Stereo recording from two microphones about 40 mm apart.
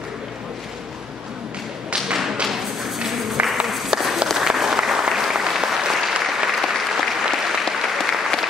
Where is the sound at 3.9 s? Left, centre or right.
Centre.